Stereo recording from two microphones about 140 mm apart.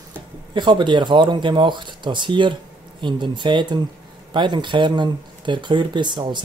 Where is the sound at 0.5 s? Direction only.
35° right (ahead or behind).